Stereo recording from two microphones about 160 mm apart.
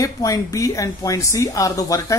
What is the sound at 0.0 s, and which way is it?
A woman's voice, 20° left (ahead or behind).